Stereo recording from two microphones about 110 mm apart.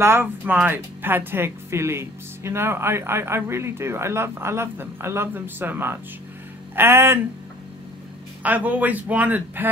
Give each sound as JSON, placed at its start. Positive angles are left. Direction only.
{"t": 0.0, "sound": "speech", "side_deg": -20}
{"t": 8.4, "sound": "speech", "side_deg": -15}